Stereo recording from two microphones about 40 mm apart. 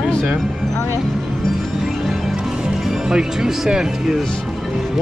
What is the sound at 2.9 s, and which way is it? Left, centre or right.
Speech, centre.